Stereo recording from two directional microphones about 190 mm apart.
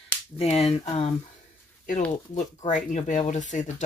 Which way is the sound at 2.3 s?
40° left (ahead or behind).